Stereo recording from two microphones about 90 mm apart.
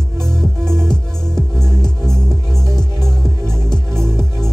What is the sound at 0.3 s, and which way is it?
Music, 5° left (ahead or behind).